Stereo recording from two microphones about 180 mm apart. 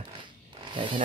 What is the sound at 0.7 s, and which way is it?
Zipper, 25° right (ahead or behind).